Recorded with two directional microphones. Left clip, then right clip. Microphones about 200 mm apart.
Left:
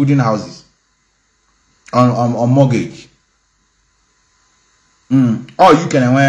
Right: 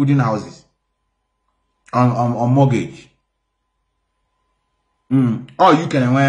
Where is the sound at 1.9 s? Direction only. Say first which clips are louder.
Left 4 dB; 5° right (ahead or behind).